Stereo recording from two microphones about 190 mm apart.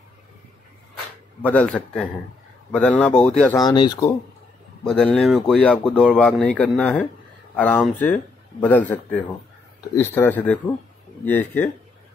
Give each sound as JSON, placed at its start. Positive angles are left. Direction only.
{"t": 1.4, "sound": "speech", "side_deg": 10}
{"t": 3.5, "sound": "speech", "side_deg": 20}
{"t": 4.8, "sound": "speech", "side_deg": 5}